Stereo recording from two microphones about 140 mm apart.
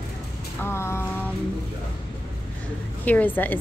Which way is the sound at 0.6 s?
15° left (ahead or behind).